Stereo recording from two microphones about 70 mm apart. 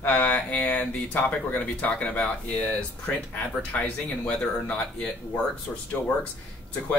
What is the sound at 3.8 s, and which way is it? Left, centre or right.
Speech, centre.